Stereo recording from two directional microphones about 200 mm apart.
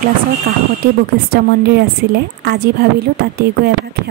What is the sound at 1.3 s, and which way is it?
A woman's voice, 50° right (ahead or behind).